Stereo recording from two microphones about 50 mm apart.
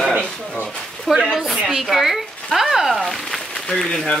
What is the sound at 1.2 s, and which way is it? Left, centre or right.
Speech, centre.